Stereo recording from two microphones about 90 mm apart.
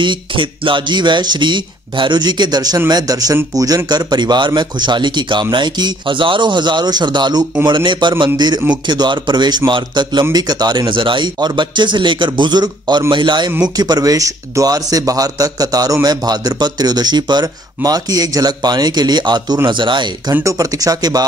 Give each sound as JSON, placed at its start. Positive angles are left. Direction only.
{"t": 0.0, "sound": "a man's voice", "side_deg": -65}
{"t": 10.3, "sound": "speech", "side_deg": -50}
{"t": 13.7, "sound": "a man's voice", "side_deg": -45}
{"t": 20.4, "sound": "a man's voice", "side_deg": -40}